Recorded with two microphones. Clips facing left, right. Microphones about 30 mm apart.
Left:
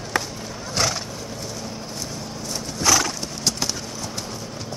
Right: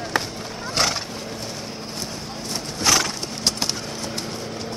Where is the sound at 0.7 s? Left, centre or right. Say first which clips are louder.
Right 1 dB; right.